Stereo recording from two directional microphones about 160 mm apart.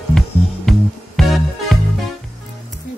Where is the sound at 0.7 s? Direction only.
Centre (ahead or behind).